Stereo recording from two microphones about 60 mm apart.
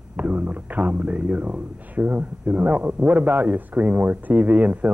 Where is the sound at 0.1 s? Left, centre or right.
Right.